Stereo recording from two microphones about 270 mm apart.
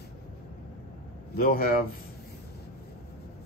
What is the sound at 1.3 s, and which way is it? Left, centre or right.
Speech, left.